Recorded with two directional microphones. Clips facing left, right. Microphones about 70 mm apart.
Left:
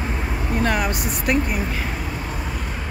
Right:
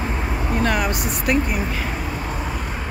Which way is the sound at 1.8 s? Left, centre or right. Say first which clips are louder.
Right 2 dB; centre.